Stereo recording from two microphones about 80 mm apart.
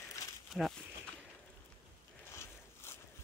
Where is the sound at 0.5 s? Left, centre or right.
Centre.